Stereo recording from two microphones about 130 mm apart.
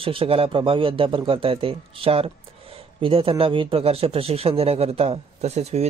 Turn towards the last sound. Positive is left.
turn(degrees=-55)  # may be behind; listen again after turning